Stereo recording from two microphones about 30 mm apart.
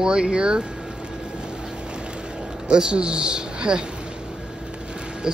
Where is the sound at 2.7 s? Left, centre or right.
Right.